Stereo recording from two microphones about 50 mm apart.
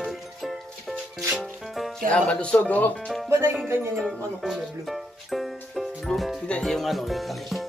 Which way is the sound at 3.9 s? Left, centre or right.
Centre.